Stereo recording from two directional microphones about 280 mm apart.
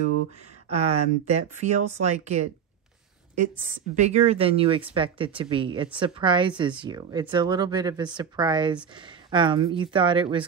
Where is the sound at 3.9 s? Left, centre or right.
Right.